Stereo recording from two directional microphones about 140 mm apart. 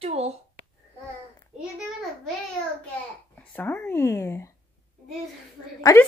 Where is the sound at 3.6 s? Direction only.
10° left (ahead or behind).